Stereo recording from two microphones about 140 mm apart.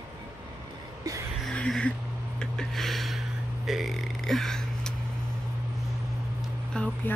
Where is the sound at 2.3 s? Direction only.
5° left (ahead or behind).